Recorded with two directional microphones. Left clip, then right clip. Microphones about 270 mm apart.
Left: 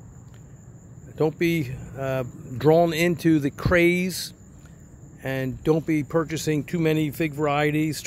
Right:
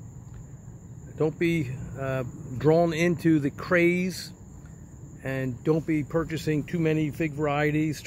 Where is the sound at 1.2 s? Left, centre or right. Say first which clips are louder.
Left 3 dB; centre.